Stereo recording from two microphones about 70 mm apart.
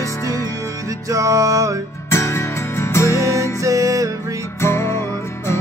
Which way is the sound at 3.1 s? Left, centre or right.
Right.